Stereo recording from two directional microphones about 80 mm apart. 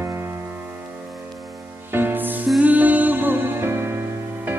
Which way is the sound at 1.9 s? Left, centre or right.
Right.